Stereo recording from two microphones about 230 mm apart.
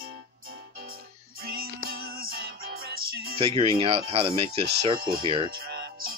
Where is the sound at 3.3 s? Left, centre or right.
Right.